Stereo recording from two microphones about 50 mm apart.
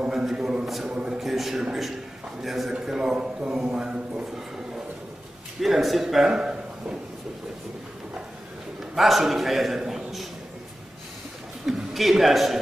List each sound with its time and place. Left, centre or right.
0.0 s a man's voice: centre
0.8 s a man's voice: centre
1.2 s a man's voice: centre; by 4.3 s right
5.6 s a man's voice: centre
8.9 s a man's voice: centre
9.8 s a sound: centre
11.6 s a man's voice: centre